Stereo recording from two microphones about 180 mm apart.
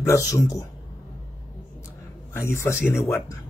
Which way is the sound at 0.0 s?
15° left (ahead or behind).